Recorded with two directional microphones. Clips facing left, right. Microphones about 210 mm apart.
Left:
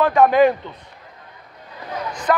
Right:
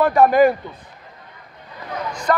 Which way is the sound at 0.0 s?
10° right (ahead or behind).